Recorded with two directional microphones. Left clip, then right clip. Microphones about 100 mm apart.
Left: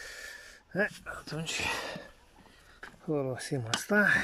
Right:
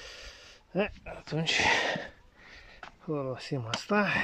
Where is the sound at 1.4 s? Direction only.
75° right (ahead or behind).